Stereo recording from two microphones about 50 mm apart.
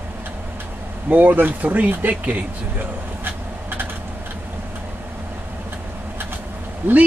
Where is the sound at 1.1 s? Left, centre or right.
Right.